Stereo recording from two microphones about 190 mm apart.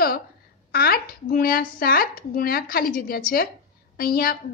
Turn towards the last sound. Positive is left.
turn(degrees=50)  # may be behind; listen again after turning